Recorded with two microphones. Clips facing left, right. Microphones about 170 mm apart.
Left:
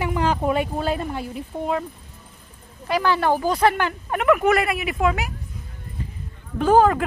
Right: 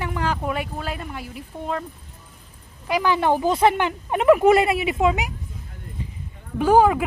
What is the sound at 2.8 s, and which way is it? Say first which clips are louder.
Speech: even; 15° right (ahead or behind).